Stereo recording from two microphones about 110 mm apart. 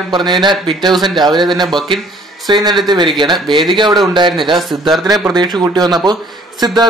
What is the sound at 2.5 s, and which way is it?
A man's voice, 45° right (ahead or behind).